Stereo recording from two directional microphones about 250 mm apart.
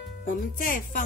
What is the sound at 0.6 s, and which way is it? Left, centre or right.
Speech, left.